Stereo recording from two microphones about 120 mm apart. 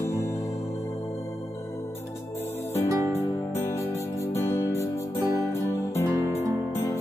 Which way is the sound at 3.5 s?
20° left (ahead or behind).